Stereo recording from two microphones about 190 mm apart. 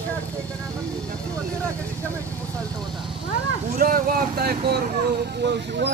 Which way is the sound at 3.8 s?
50° right (ahead or behind).